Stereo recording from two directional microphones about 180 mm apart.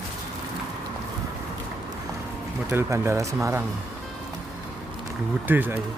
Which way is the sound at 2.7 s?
15° right (ahead or behind).